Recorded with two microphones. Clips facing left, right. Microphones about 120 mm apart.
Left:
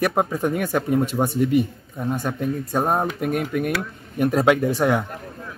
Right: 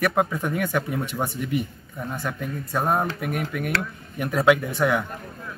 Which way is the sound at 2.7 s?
30° left (ahead or behind).